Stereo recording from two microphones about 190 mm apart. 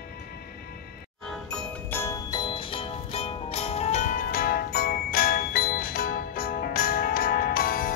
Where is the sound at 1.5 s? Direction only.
10° left (ahead or behind).